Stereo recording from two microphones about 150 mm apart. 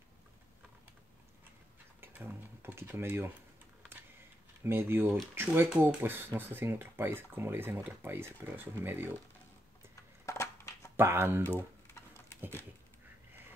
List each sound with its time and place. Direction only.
2.0 s speech: 15° right (ahead or behind)
4.6 s speech: 15° right (ahead or behind)
10.2 s crushing: 20° left (ahead or behind)
11.0 s speech: 15° right (ahead or behind)
11.4 s typing: 15° left (ahead or behind)